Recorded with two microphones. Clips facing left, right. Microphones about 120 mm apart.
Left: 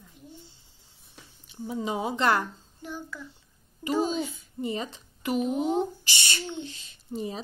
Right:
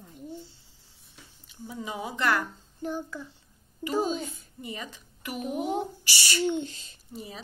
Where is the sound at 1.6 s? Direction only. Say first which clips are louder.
Left 6 dB; 25° left (ahead or behind).